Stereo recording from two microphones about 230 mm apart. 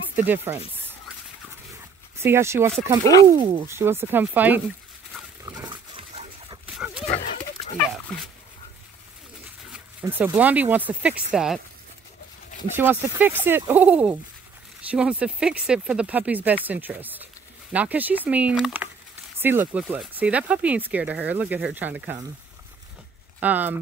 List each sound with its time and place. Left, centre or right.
0.1 s speech: centre
2.1 s speech: centre
5.4 s pig: centre
6.6 s dog: centre
7.1 s pig: left
9.7 s speech: centre
12.7 s speech: centre
23.4 s speech: centre